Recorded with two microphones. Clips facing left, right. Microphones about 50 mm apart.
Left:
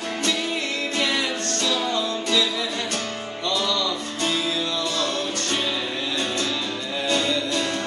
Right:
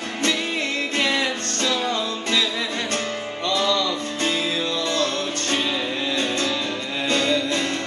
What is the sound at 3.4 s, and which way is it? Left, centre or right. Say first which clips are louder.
Music: right 2 dB; right.